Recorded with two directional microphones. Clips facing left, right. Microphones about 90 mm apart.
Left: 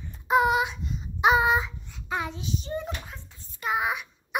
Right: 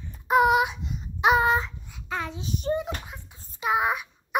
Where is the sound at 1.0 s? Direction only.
Centre (ahead or behind).